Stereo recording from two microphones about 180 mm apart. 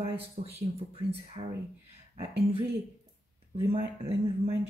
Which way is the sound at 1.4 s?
30° right (ahead or behind).